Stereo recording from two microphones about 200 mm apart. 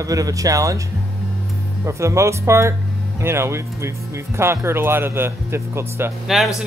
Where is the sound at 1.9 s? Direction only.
15° right (ahead or behind).